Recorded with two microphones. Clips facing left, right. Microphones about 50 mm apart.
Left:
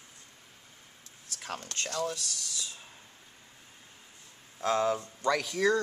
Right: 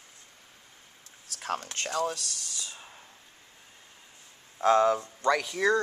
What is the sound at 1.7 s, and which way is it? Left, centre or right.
Speech, centre.